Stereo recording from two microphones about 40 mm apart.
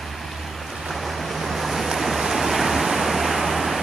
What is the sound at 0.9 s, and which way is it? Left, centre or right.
Waves, centre.